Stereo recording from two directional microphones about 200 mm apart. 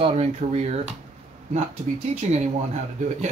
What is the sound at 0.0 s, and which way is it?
Speech, 30° right (ahead or behind).